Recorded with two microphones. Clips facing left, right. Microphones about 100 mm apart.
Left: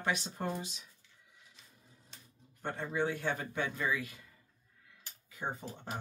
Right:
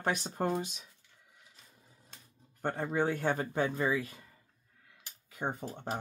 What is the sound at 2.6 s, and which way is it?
Speech, 50° right (ahead or behind).